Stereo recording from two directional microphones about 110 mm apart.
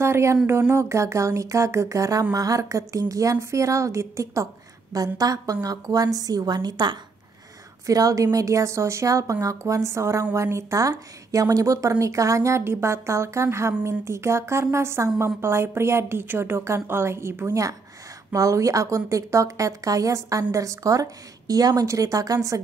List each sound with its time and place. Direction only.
0.0 s a woman's voice: 25° right (ahead or behind)